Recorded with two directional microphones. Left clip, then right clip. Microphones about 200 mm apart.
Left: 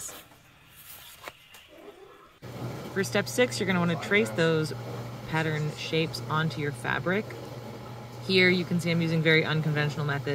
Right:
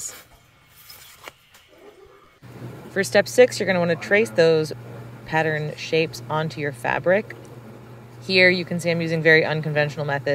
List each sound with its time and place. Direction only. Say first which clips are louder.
3.0 s speech: right 10 dB; 35° right (ahead or behind)
8.4 s speech: right 7 dB; 40° right (ahead or behind)